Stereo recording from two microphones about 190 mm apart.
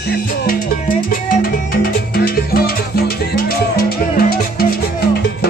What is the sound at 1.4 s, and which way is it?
Music, 50° left (ahead or behind).